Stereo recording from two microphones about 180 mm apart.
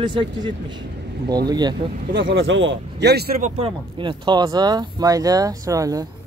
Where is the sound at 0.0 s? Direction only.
25° right (ahead or behind).